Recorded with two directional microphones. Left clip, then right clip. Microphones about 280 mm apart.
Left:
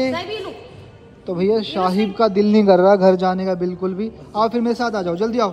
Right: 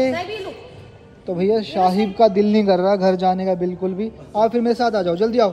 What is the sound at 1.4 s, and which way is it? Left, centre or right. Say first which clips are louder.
Speech: left 1 dB; left.